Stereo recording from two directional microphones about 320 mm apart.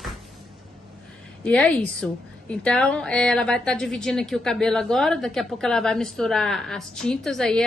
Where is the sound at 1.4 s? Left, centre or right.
Centre.